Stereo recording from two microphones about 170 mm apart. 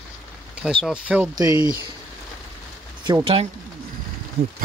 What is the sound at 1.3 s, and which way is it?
Speech, 20° right (ahead or behind).